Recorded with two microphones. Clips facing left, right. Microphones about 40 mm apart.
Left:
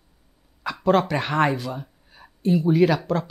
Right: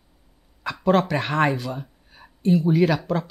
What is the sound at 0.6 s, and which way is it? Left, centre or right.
Speech, centre.